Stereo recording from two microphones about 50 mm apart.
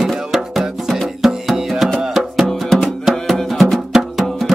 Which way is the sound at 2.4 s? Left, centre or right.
Centre.